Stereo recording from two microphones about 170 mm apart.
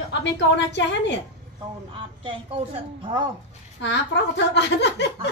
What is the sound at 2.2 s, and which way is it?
Speech, 30° right (ahead or behind).